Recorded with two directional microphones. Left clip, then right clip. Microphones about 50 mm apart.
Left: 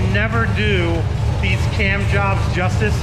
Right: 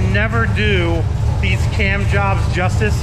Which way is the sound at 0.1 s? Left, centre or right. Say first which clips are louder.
Right 2 dB; centre.